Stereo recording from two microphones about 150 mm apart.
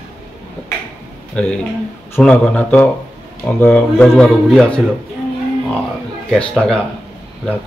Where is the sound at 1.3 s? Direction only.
10° left (ahead or behind).